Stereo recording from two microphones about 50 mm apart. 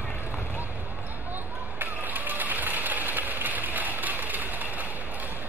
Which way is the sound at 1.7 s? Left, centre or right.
Right.